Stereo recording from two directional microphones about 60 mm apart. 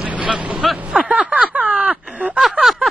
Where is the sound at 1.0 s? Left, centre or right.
Centre.